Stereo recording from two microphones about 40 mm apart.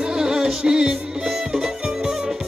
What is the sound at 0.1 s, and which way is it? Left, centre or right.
Music, centre.